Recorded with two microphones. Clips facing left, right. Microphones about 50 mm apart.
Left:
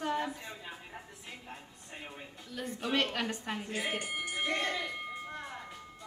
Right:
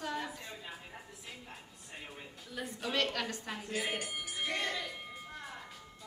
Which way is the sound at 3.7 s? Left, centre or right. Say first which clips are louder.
Even; centre.